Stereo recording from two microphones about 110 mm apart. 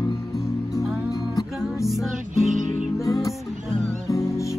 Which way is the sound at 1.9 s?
Centre (ahead or behind).